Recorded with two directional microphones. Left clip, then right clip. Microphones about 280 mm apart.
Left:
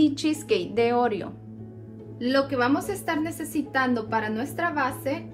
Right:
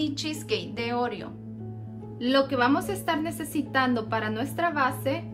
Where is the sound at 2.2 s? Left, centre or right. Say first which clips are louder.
Even; right.